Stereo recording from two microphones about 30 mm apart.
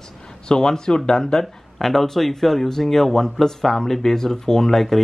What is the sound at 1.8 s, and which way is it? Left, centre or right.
Speech, centre.